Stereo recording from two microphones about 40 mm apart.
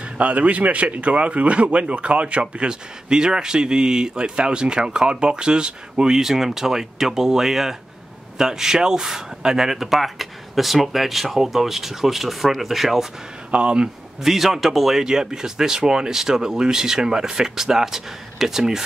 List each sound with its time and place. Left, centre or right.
0.2 s speech: right; by 13.0 s centre
13.5 s speech: right
14.2 s speech: centre